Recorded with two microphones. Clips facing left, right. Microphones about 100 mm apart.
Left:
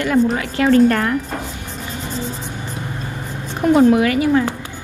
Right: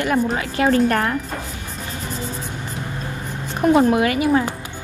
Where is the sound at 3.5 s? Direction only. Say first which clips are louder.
Left 3 dB; 20° right (ahead or behind).